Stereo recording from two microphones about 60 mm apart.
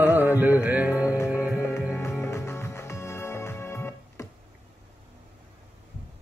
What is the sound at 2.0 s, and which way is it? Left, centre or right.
Music, left.